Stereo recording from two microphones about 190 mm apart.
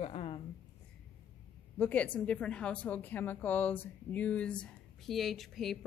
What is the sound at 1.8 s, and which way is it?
A woman's voice, 10° left (ahead or behind).